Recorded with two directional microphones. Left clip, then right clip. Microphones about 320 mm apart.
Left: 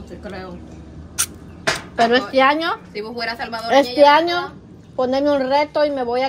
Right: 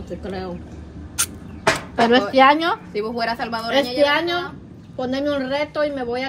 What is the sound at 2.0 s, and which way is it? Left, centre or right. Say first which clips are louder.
Speech: right 1 dB; centre.